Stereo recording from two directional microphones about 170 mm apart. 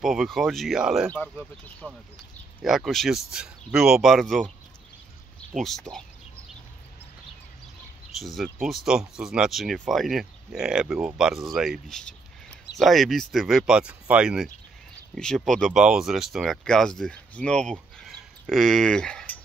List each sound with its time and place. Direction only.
0.0 s speech: centre (ahead or behind)
1.1 s speech: 10° left (ahead or behind)
1.8 s speech: 10° right (ahead or behind)
5.6 s speech: 5° left (ahead or behind)
8.2 s speech: centre (ahead or behind)